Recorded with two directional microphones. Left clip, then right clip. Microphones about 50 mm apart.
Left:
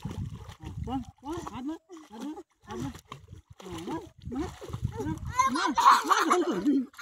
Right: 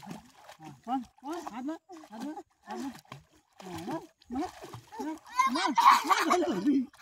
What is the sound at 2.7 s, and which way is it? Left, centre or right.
Roaring cats, right.